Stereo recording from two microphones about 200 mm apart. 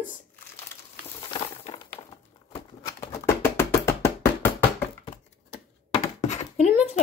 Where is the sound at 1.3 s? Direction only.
25° left (ahead or behind).